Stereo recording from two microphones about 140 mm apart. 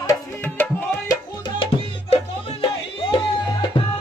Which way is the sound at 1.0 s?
35° left (ahead or behind).